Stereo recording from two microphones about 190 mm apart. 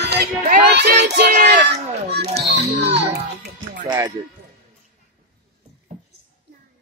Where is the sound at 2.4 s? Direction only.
60° right (ahead or behind).